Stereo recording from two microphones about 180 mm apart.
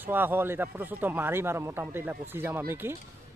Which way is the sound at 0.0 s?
10° right (ahead or behind).